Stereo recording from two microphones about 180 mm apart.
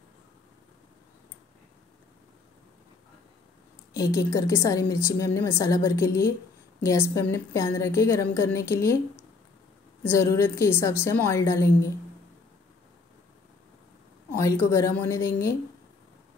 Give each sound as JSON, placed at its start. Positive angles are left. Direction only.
{"t": 3.9, "sound": "a woman's voice", "side_deg": 20}
{"t": 14.3, "sound": "a woman's voice", "side_deg": 15}